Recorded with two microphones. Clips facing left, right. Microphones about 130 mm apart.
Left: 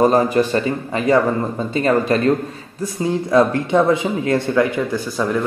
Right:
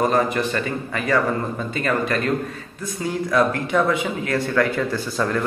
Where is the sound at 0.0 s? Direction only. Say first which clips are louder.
Left 5 dB; 30° left (ahead or behind).